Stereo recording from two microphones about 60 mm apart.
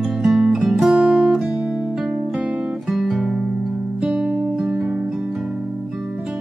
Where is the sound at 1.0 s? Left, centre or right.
Centre.